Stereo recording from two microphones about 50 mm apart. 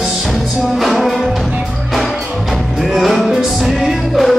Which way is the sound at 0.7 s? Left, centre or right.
Centre.